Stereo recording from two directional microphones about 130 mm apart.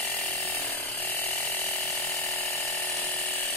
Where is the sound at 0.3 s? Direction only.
15° left (ahead or behind).